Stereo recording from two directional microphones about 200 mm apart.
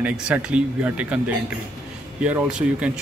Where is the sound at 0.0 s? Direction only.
5° right (ahead or behind).